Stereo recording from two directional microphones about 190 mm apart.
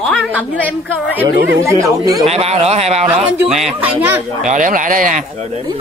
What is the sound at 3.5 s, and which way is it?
Speech, 5° right (ahead or behind).